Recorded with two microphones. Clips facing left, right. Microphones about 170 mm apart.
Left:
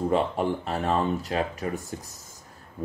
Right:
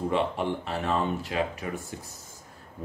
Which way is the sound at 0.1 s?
40° left (ahead or behind).